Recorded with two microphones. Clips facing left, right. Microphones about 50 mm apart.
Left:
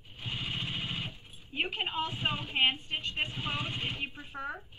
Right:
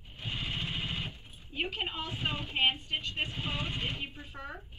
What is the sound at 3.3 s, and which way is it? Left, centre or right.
Speech, centre.